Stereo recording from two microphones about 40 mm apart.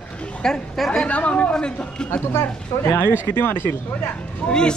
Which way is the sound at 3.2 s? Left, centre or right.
Left.